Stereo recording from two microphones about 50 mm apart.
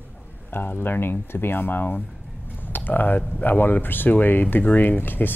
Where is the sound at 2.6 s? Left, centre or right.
Left.